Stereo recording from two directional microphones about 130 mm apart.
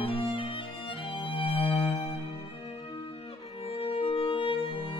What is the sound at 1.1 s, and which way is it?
Violin, 40° left (ahead or behind).